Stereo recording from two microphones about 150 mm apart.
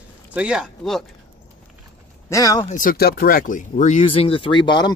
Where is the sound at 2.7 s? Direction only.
65° left (ahead or behind).